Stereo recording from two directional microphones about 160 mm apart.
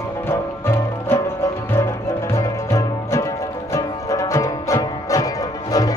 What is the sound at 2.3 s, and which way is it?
Music, 20° left (ahead or behind).